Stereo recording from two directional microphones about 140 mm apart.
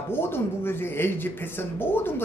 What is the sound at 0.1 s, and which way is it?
A man's voice, 15° left (ahead or behind).